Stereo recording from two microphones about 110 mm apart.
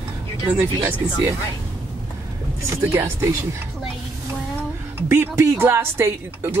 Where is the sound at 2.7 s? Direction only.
25° right (ahead or behind).